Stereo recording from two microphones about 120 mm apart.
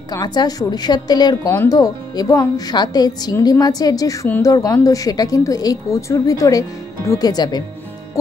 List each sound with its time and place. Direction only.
0.1 s a woman's voice: 35° left (ahead or behind)